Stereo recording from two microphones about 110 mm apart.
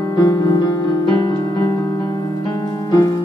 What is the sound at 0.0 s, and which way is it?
Music, 35° left (ahead or behind).